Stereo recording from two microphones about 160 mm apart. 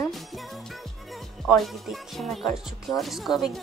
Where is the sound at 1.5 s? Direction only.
Centre (ahead or behind).